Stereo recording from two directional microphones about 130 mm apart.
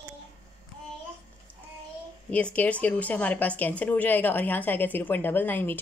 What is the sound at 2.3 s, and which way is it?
A woman's voice, 10° left (ahead or behind).